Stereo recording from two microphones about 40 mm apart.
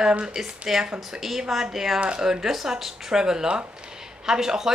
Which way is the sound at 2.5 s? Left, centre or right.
Centre.